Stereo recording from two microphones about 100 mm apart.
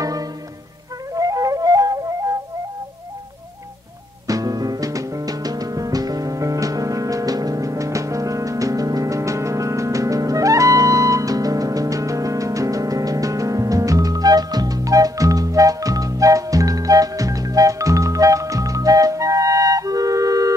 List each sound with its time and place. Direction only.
0.0 s music: 35° right (ahead or behind)
4.3 s music: 35° right (ahead or behind)